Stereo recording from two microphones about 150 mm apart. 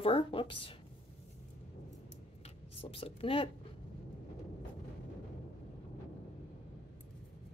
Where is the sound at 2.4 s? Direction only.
40° left (ahead or behind).